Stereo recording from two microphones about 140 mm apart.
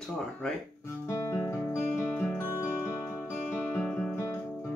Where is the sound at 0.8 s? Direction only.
20° left (ahead or behind).